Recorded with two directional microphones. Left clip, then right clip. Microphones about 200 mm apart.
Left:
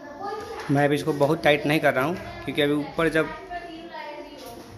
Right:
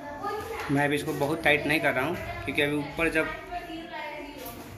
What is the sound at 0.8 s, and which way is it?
Speech, 45° left (ahead or behind).